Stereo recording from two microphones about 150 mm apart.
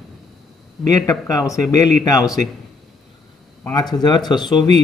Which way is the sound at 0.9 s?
25° left (ahead or behind).